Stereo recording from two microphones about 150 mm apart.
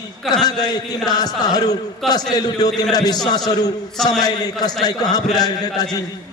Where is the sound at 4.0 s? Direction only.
Centre (ahead or behind).